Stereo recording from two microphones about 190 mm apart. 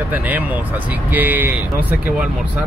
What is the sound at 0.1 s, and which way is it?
Speech, 10° right (ahead or behind).